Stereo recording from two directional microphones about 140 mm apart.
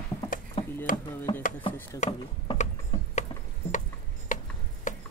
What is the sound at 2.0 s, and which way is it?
Ratchet, 60° left (ahead or behind).